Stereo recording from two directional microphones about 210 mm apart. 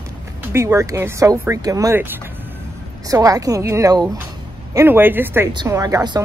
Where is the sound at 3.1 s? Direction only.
15° right (ahead or behind).